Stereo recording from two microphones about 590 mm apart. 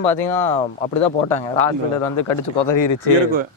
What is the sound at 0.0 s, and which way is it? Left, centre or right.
Speech, left.